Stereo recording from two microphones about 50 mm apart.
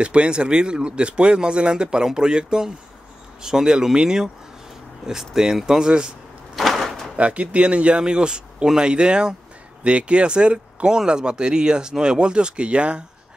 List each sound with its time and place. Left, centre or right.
0.0 s speech: right
6.5 s door: centre
7.2 s speech: right